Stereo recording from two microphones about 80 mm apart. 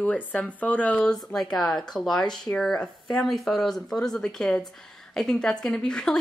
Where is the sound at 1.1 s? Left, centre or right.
Centre.